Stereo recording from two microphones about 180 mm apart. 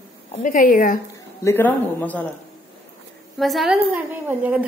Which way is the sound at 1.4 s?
10° left (ahead or behind).